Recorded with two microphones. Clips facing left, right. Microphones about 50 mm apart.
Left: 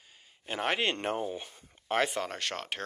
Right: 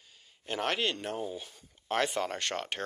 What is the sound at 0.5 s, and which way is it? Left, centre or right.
Speech, centre.